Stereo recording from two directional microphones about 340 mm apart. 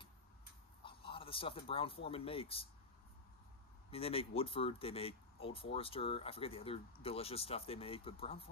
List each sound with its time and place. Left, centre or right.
0.8 s speech: centre
3.9 s speech: centre